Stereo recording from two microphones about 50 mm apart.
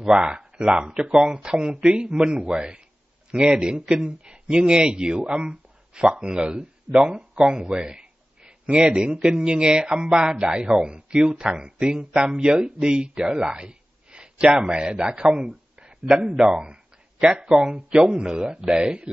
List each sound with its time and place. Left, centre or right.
0.0 s a man's voice: centre
7.6 s a sound: centre
9.3 s speech: centre